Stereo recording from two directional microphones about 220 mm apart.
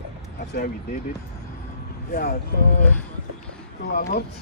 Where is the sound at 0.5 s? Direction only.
40° left (ahead or behind).